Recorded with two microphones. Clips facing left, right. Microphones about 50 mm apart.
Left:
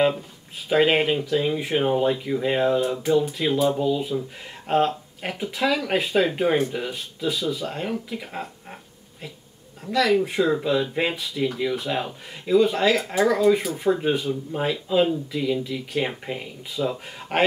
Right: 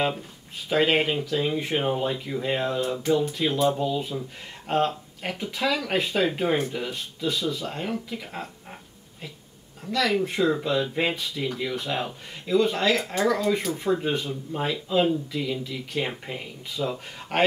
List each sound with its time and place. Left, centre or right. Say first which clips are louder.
0.7 s speech: left 3 dB; centre
9.8 s speech: left 4 dB; centre
13.0 s speech: left 3 dB; centre
13.3 s speech: left 7 dB; centre